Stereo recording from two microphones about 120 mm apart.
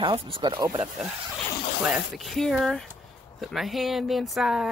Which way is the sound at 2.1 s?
Centre (ahead or behind).